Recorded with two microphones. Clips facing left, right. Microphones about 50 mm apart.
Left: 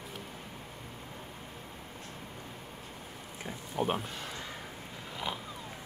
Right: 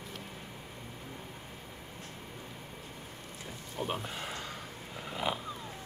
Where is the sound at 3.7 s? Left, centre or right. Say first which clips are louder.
Left 5 dB; centre.